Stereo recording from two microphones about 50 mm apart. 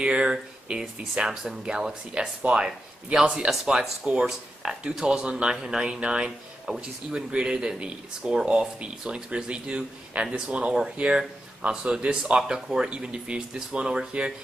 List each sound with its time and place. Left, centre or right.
0.0 s speech: centre